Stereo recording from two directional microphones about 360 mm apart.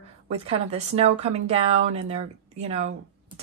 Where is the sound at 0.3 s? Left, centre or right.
Centre.